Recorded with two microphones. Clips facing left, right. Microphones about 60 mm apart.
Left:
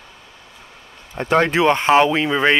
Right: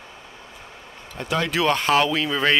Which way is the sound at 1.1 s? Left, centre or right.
Left.